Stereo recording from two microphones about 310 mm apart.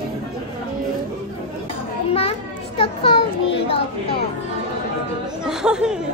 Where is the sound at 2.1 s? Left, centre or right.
Centre.